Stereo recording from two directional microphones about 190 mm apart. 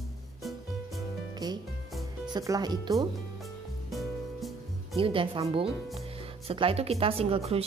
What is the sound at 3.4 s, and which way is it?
Music, centre (ahead or behind).